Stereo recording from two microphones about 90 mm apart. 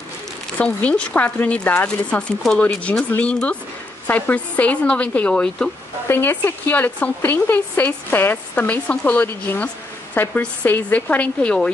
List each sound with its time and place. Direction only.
0.6 s speech: 15° left (ahead or behind)
6.0 s a woman's voice: 25° left (ahead or behind)